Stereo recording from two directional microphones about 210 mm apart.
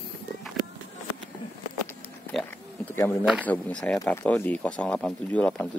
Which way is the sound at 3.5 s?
5° left (ahead or behind).